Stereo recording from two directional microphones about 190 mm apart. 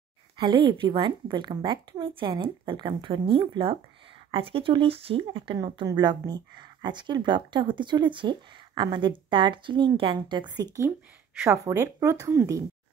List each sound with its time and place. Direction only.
0.4 s speech: 25° right (ahead or behind)